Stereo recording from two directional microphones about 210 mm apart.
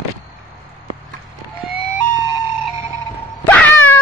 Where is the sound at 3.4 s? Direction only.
10° left (ahead or behind).